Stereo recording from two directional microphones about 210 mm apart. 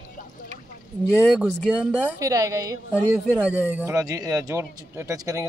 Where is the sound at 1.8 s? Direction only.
15° right (ahead or behind).